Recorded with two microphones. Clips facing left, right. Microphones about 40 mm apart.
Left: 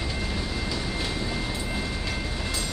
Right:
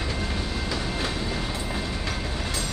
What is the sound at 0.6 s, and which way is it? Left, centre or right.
Train, right.